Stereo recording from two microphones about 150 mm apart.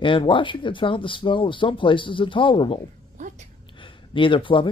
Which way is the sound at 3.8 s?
35° left (ahead or behind).